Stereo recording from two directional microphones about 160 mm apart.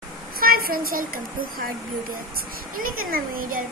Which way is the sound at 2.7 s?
60° right (ahead or behind).